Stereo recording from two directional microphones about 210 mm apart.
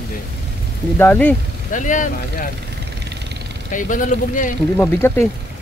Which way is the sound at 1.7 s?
35° left (ahead or behind).